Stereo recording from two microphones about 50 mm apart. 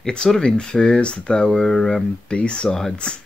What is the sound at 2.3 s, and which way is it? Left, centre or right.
Speech, centre.